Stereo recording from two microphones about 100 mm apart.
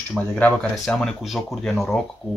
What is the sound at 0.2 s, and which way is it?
Speech, 5° left (ahead or behind).